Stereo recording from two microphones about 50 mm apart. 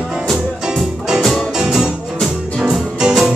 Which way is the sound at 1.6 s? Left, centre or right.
Centre.